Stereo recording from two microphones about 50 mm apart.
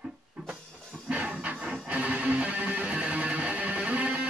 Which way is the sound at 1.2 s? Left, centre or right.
Right.